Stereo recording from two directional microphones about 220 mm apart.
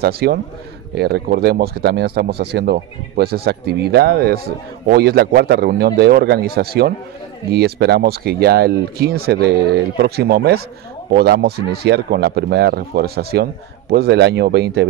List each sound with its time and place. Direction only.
0.0 s speech: 45° right (ahead or behind)